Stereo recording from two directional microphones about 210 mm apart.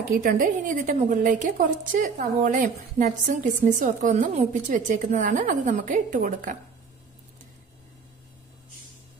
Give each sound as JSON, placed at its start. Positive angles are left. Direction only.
{"t": 0.1, "sound": "a woman's voice", "side_deg": -40}